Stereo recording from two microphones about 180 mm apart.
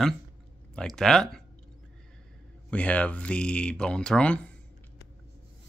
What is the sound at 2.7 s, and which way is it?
Speech, 5° left (ahead or behind).